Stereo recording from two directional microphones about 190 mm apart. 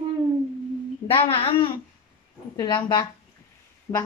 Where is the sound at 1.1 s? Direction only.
25° left (ahead or behind).